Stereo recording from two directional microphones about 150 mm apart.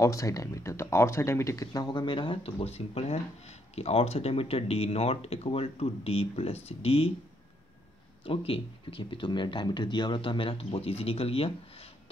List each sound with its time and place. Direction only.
0.0 s speech: 20° left (ahead or behind); by 7.1 s 40° left (ahead or behind)
8.5 s speech: 35° left (ahead or behind)